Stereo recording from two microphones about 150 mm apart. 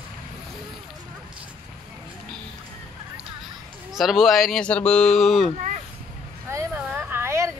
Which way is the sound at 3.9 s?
Centre (ahead or behind).